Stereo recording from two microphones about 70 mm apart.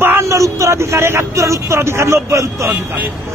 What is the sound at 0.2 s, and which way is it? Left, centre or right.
Speech, right.